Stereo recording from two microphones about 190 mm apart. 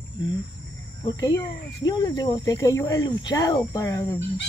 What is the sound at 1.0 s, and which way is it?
Speech, 20° left (ahead or behind).